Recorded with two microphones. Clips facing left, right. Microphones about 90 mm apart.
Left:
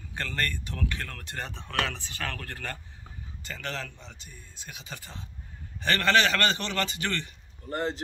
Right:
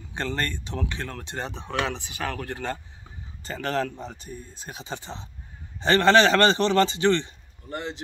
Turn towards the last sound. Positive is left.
turn(degrees=40)  # may be behind; listen again after turning